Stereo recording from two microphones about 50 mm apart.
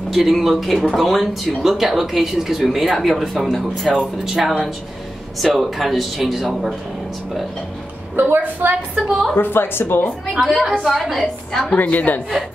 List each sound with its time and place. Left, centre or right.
0.1 s speech: centre
8.2 s a woman's voice: right
8.9 s a woman's voice: centre
9.4 s speech: left
10.4 s speech: centre
11.7 s a woman's voice: left